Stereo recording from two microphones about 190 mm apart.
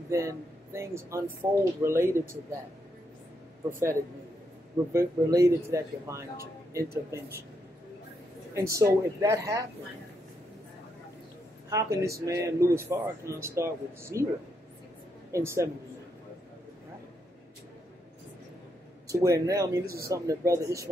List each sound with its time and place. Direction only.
0.1 s speech: 15° right (ahead or behind)
4.9 s speech: 15° right (ahead or behind)
8.5 s speech: 15° right (ahead or behind)
11.7 s speech: 15° right (ahead or behind)
15.3 s speech: 15° right (ahead or behind)
19.0 s speech: 15° right (ahead or behind)